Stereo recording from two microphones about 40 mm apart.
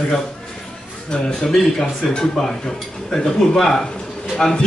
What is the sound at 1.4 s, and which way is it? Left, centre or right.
A man's voice, centre.